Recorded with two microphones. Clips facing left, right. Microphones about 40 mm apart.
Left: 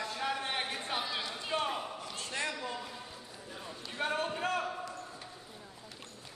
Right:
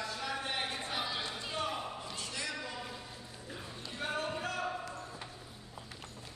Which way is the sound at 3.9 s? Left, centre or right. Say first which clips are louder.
Left 3 dB; left.